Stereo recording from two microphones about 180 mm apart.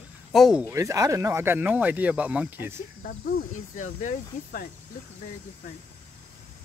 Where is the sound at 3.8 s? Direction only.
45° left (ahead or behind).